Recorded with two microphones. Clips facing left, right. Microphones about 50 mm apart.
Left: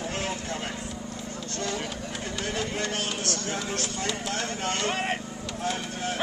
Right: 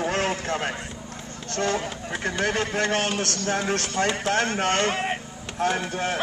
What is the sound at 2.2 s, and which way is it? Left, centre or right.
A man's voice, right.